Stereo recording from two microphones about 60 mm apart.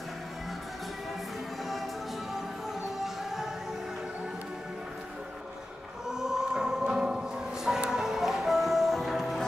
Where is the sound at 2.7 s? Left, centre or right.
Centre.